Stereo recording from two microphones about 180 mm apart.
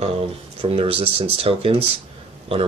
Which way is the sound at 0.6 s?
30° right (ahead or behind).